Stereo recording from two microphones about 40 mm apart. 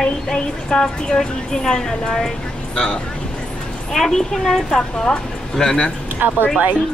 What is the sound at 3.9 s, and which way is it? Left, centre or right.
A woman's voice, centre.